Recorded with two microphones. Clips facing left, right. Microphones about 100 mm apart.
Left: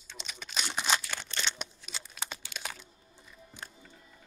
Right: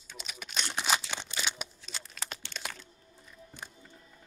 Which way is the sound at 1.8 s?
Centre (ahead or behind).